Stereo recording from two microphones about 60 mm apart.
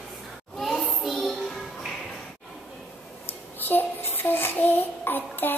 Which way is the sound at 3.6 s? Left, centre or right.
Left.